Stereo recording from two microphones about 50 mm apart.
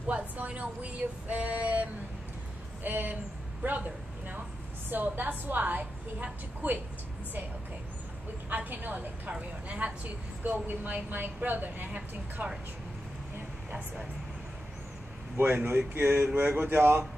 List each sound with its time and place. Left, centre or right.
0.0 s a woman's voice: right
1.2 s female singing: right
2.8 s a woman's voice: right
8.5 s a woman's voice: right
15.3 s speech: right
16.3 s speech: right